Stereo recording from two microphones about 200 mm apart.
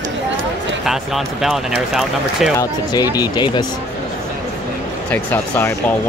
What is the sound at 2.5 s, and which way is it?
Speech, 20° left (ahead or behind).